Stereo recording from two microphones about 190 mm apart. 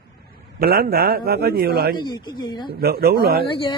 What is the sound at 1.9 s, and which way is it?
Speech, 25° left (ahead or behind).